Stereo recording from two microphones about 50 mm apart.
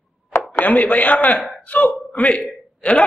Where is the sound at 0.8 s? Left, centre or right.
Left.